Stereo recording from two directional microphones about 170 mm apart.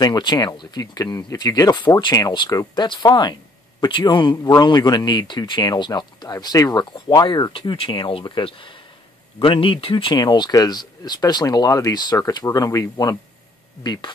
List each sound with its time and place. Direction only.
0.0 s speech: 25° left (ahead or behind)